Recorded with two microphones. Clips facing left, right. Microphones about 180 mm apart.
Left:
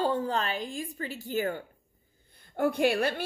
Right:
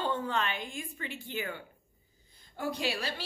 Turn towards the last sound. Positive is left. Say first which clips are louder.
# left 9 dB
turn(degrees=55)  # may be behind; listen again after turning